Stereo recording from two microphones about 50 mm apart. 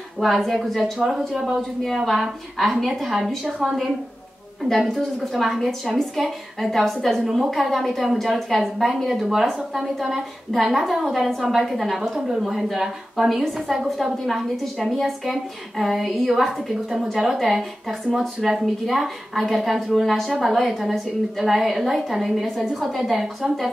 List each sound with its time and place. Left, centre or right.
0.2 s a woman's voice: centre